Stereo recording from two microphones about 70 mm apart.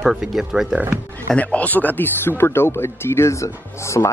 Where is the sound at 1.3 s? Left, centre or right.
Centre.